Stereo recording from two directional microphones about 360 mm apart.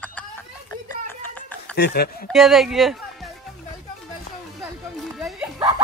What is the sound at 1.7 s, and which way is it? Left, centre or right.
Speech, left.